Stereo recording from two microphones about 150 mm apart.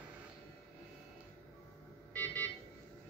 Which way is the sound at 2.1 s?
10° left (ahead or behind).